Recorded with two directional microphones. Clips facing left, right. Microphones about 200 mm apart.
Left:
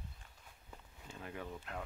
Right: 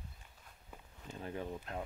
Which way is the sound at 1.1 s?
30° right (ahead or behind).